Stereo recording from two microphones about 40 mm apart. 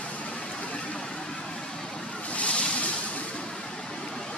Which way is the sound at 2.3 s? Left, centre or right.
Left.